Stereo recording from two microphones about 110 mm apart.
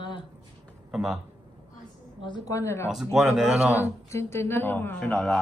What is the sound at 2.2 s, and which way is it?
Speech, 35° left (ahead or behind).